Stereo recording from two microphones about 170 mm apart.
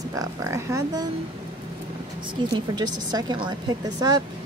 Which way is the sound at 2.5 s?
25° right (ahead or behind).